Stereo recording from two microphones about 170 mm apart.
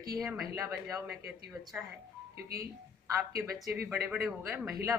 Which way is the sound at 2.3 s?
65° right (ahead or behind).